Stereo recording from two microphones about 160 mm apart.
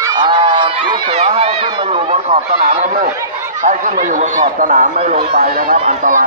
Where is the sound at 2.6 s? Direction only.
60° right (ahead or behind).